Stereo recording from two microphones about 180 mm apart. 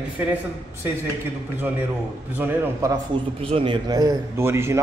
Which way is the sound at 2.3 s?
10° right (ahead or behind).